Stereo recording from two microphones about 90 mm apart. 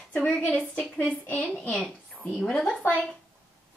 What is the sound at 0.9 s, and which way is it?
A woman's voice, 15° left (ahead or behind).